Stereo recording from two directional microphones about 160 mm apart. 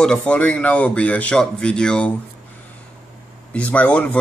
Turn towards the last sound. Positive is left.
turn(degrees=10)  # may be behind; listen again after turning